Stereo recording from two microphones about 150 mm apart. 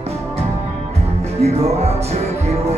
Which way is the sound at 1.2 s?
45° right (ahead or behind).